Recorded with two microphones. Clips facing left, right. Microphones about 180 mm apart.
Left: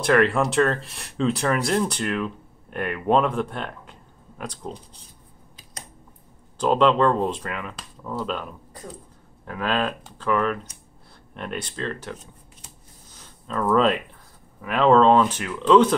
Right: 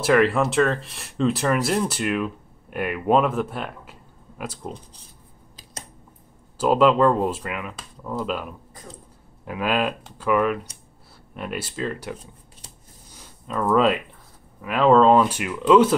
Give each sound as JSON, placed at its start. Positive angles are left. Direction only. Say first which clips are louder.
{"t": 0.0, "sound": "speech", "louder": "right 1 dB", "side_deg": -5}
{"t": 6.6, "sound": "speech", "louder": "right 2 dB", "side_deg": -5}
{"t": 13.2, "sound": "speech", "louder": "even", "side_deg": -5}